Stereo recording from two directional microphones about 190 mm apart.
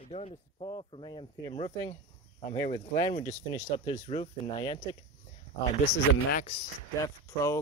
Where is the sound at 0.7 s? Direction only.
20° left (ahead or behind).